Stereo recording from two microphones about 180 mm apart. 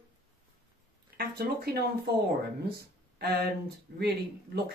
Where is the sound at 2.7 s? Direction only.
60° right (ahead or behind).